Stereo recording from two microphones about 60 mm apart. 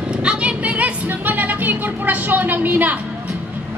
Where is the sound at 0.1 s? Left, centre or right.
Centre.